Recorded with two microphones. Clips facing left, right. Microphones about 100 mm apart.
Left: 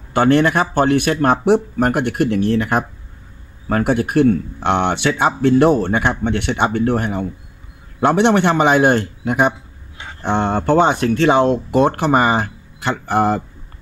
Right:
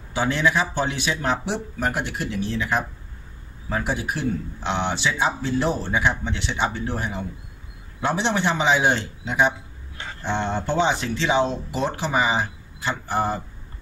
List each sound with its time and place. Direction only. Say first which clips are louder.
0.1 s speech: left 8 dB; 60° left (ahead or behind)